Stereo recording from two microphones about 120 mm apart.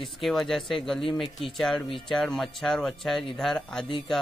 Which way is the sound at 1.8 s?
45° left (ahead or behind).